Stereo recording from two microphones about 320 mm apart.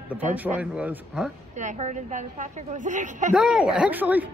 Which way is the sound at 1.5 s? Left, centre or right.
Right.